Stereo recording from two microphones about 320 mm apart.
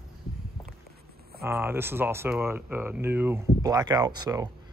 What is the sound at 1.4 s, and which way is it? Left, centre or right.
Speech, centre.